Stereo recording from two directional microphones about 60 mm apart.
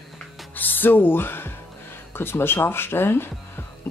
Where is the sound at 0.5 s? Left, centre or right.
Left.